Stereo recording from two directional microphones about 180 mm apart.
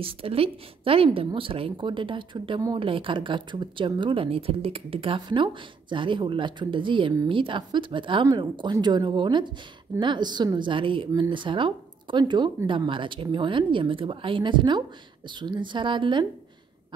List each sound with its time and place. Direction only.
0.0 s a woman's voice: 30° right (ahead or behind)